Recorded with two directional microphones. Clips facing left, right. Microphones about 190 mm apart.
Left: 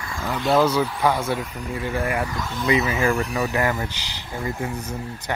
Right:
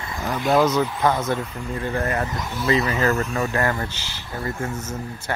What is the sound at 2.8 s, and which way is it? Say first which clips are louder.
Speech: even; 10° left (ahead or behind).